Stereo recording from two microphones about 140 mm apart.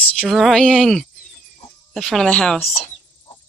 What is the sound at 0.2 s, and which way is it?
Speech, centre (ahead or behind).